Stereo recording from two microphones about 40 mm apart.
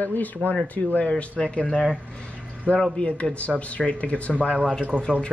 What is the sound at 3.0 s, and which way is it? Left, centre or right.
Speech, left.